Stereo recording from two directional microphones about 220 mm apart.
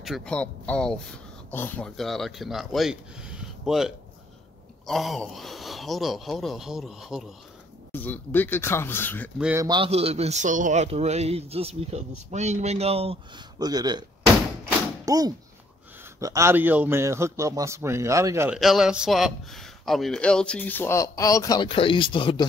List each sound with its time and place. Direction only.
0.0 s speech: centre (ahead or behind)
9.4 s a man's voice: 10° right (ahead or behind)
9.7 s a man's voice: 25° right (ahead or behind)
18.6 s speech: centre (ahead or behind); by 22.5 s 20° left (ahead or behind)